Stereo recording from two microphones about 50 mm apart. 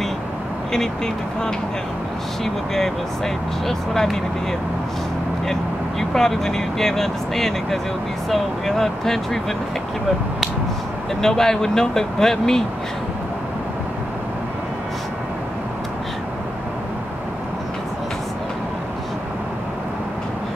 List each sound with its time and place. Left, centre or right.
0.7 s speech: centre
11.1 s speech: centre